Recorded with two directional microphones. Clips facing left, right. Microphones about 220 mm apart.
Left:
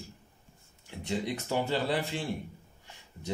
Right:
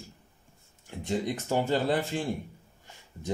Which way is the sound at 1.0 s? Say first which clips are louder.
Right 3 dB; 45° right (ahead or behind).